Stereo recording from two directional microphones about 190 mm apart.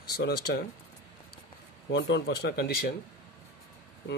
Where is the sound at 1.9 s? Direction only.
65° left (ahead or behind).